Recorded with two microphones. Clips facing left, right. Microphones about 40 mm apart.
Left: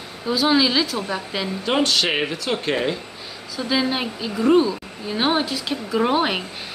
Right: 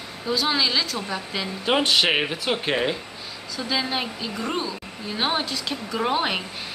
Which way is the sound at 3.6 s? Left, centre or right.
Centre.